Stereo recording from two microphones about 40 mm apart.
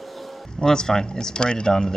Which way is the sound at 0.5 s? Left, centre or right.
Centre.